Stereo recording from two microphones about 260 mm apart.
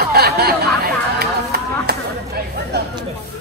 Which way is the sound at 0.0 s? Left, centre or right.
Right.